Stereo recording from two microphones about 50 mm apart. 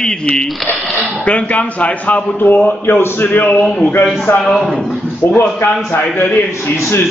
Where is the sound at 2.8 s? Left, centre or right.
Left.